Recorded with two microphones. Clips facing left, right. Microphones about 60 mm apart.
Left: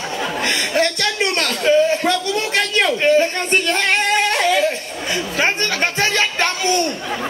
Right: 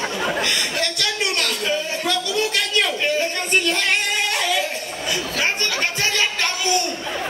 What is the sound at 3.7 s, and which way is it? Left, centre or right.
Yodeling, left.